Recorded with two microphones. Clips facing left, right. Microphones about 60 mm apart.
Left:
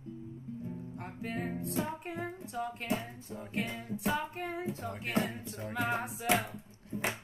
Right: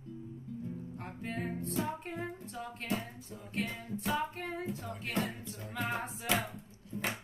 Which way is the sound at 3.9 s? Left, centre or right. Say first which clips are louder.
Left 1 dB; centre.